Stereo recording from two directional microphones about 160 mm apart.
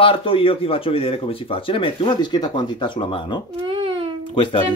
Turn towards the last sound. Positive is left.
turn(degrees=30)  # may be behind; listen again after turning